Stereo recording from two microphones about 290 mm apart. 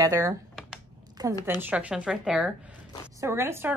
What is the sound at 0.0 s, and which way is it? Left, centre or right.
A woman's voice, centre.